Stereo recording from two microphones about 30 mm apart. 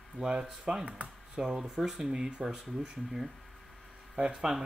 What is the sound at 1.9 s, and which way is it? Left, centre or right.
Speech, right.